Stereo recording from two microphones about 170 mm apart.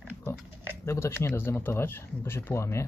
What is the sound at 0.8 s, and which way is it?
Speech, 15° left (ahead or behind).